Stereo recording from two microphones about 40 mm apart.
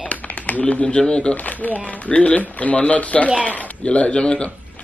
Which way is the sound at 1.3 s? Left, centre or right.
Left.